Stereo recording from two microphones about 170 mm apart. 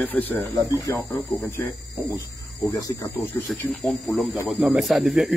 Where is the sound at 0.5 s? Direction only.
20° left (ahead or behind).